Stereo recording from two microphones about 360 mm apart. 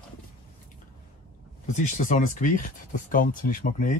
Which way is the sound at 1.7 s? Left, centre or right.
Left.